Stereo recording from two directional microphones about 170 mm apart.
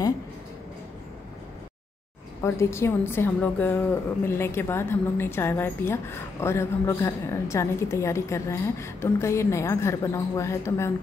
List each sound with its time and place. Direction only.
2.4 s a woman's voice: 15° left (ahead or behind)